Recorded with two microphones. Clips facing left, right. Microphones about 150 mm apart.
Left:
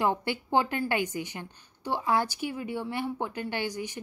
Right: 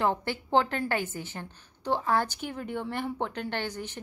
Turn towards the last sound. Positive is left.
turn(degrees=10)  # may be behind; listen again after turning